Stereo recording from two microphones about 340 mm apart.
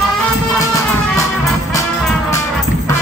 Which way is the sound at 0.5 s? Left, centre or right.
Centre.